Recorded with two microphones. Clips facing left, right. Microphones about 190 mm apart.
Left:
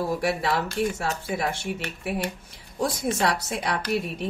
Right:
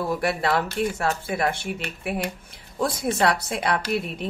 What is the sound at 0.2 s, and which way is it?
Speech, 60° right (ahead or behind).